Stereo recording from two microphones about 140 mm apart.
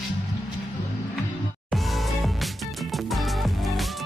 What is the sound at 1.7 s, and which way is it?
Music, centre (ahead or behind).